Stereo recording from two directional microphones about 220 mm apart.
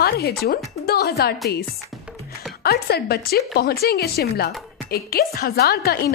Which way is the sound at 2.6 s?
45° left (ahead or behind).